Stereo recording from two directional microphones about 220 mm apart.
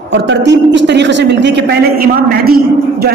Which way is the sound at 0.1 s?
55° right (ahead or behind).